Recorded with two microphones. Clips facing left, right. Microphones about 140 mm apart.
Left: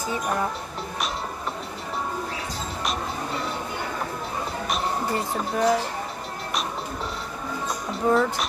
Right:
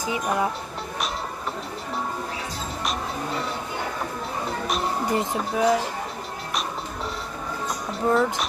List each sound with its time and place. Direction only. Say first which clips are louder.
0.0 s speech: right 1 dB; 10° right (ahead or behind)
5.0 s a sound: right 2 dB; 20° right (ahead or behind)
5.3 s speech: left 1 dB; centre (ahead or behind)
7.9 s speech: even; centre (ahead or behind)